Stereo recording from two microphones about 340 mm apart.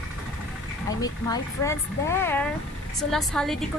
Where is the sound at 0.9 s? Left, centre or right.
Centre.